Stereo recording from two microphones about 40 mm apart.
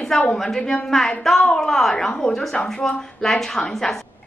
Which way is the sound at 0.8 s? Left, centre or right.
Centre.